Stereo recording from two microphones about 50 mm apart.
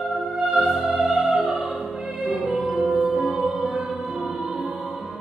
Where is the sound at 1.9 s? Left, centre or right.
Centre.